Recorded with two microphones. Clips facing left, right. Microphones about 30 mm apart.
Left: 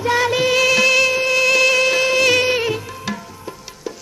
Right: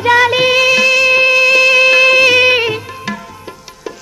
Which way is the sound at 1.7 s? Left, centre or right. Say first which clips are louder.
Right 8 dB; right.